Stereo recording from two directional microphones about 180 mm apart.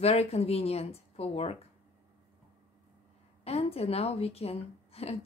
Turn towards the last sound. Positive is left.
turn(degrees=35)  # may be behind; listen again after turning